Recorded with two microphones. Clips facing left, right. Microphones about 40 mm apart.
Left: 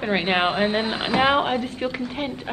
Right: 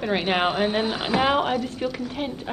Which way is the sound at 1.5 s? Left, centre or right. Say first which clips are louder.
Left 1 dB; left.